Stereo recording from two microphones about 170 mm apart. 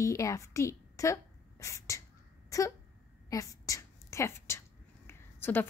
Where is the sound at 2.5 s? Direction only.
20° left (ahead or behind).